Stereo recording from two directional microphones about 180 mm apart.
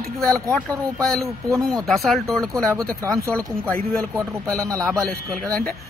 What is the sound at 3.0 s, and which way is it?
Speech, 15° right (ahead or behind).